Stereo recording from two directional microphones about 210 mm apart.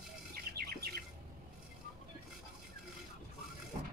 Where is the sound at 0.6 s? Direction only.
45° right (ahead or behind).